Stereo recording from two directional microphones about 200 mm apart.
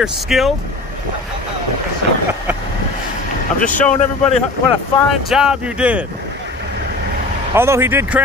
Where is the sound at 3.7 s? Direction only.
40° left (ahead or behind).